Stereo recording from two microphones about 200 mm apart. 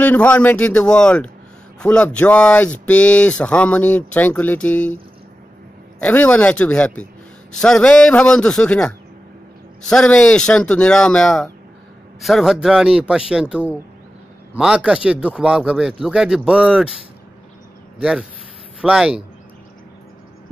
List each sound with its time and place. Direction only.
0.0 s speech: 5° left (ahead or behind)
5.9 s speech: 5° left (ahead or behind)
18.8 s speech: 5° right (ahead or behind)